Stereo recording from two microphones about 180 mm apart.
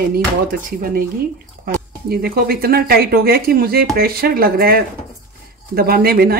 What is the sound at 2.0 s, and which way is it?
Speech, 55° right (ahead or behind).